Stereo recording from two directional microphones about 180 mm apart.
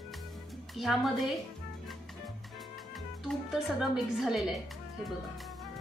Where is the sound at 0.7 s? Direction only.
Centre (ahead or behind).